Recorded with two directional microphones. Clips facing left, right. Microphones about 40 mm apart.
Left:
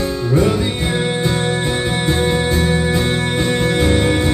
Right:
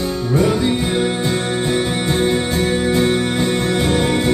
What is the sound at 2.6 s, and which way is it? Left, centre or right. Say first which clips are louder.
Music: even; left.